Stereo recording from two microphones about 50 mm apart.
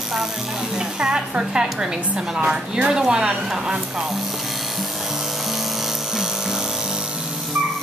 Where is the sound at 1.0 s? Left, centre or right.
Centre.